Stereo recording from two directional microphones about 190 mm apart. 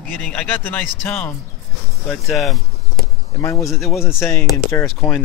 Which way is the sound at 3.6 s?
Centre (ahead or behind).